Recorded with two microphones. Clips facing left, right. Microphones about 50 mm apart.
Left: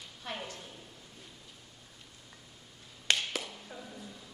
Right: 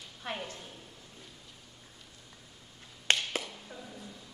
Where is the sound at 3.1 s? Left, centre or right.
Right.